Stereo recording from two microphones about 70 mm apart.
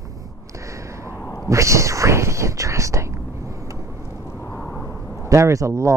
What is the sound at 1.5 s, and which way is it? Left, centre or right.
Whispering, right.